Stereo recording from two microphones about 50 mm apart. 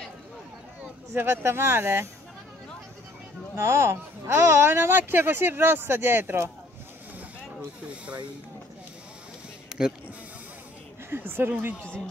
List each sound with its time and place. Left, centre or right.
1.1 s speech: right
3.5 s speech: right
9.7 s a sound: centre
11.1 s speech: right